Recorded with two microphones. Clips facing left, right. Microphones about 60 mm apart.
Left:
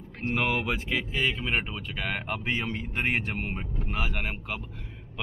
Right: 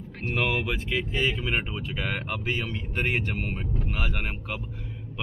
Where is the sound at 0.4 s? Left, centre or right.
Centre.